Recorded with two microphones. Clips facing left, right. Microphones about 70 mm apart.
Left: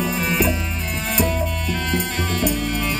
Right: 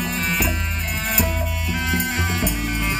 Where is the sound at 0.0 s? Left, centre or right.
Centre.